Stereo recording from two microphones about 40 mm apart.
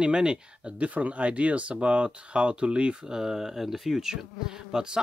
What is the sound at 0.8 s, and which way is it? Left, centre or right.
Speech, right.